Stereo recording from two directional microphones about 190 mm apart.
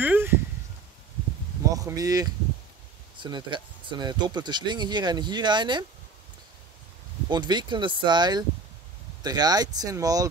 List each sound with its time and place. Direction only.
0.0 s a sound: 10° right (ahead or behind)
1.8 s speech: 20° right (ahead or behind)
7.2 s speech: 25° right (ahead or behind)